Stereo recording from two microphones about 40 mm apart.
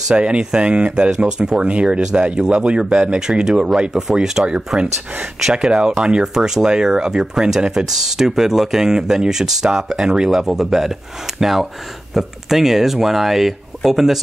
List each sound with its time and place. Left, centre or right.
0.1 s speech: right; by 4.9 s centre
5.5 s speech: right